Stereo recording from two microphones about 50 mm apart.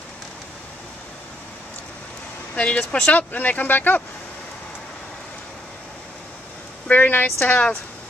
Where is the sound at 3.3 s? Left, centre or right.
Left.